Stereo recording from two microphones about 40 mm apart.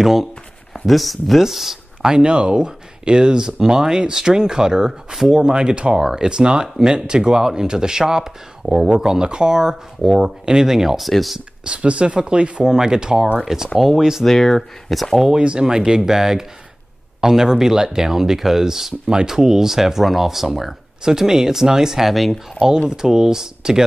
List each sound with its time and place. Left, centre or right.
0.0 s speech: centre
11.1 s speech: centre
11.6 s speech: right
12.6 s speech: centre
13.7 s speech: centre
14.2 s speech: centre
15.3 s speech: right
22.1 s speech: centre
22.8 s speech: centre